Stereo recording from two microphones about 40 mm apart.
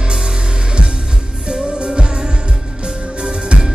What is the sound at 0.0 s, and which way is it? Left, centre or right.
Music, centre.